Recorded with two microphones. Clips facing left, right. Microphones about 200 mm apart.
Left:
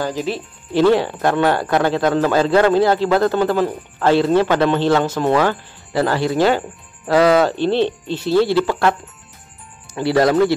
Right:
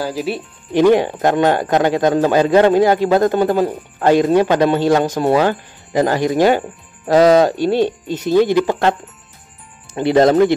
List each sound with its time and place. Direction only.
0.0 s speech: 10° right (ahead or behind)
9.9 s speech: 20° right (ahead or behind)